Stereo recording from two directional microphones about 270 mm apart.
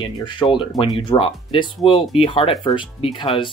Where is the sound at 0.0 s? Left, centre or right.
Centre.